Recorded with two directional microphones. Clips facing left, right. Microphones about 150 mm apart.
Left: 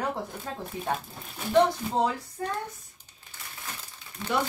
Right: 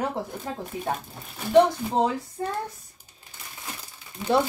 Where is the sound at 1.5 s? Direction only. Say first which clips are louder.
Right 4 dB; 20° right (ahead or behind).